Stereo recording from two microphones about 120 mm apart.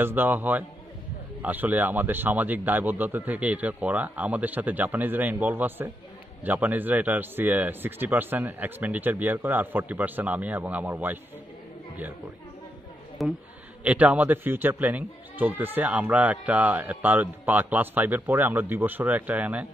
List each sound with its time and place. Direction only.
0.0 s speech: 15° right (ahead or behind)
13.2 s a man's voice: centre (ahead or behind)
13.8 s speech: 15° right (ahead or behind)